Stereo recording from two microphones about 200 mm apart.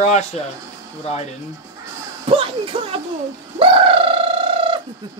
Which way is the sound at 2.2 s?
25° right (ahead or behind).